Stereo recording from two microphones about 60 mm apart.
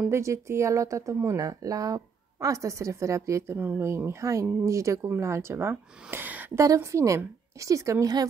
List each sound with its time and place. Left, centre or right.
0.1 s speech: right
3.5 s speech: right
3.8 s speech: right
6.0 s speech: right
6.8 s speech: right